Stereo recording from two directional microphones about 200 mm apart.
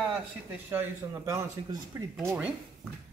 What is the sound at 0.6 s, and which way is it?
Speech, 15° right (ahead or behind).